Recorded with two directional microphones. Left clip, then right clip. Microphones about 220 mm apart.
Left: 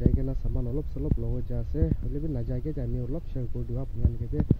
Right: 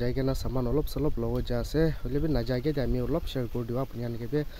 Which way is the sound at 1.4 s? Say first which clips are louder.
Right 5 dB; 15° right (ahead or behind).